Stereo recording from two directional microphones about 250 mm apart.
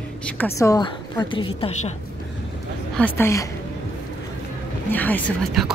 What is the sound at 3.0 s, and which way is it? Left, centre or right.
Speech, centre.